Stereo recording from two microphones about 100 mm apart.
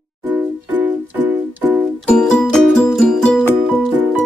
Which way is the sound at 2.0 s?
10° left (ahead or behind).